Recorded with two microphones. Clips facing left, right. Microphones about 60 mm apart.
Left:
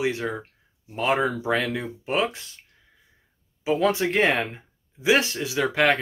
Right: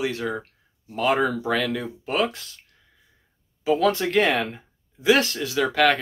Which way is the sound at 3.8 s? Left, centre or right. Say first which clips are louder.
Even; centre.